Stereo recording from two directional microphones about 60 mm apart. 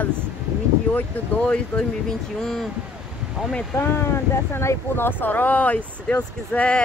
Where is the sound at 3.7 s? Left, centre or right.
Left.